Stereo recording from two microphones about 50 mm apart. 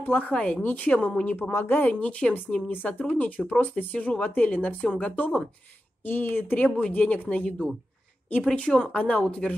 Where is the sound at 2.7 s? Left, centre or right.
Left.